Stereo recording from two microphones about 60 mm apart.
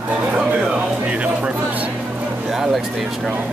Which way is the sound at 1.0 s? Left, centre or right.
Centre.